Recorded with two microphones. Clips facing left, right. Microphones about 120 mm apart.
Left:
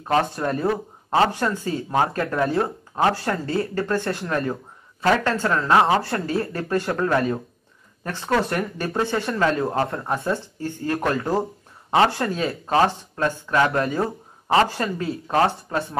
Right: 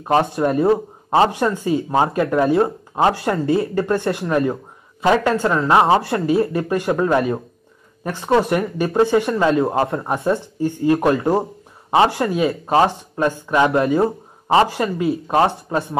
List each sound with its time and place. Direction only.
0.4 s speech: 25° right (ahead or behind)